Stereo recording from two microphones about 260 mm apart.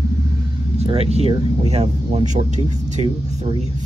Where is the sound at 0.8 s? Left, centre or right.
Right.